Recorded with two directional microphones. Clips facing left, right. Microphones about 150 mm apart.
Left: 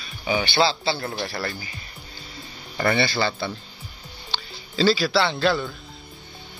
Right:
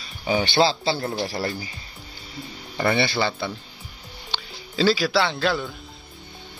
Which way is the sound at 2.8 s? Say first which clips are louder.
Even; 20° right (ahead or behind).